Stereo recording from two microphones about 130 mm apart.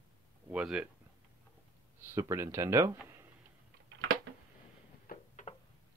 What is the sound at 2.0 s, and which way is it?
Speech, 20° right (ahead or behind).